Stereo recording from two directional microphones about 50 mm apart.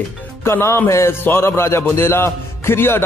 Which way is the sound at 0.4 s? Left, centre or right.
Left.